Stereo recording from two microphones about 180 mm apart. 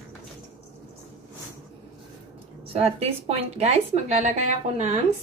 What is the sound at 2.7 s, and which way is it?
A woman's voice, 35° right (ahead or behind).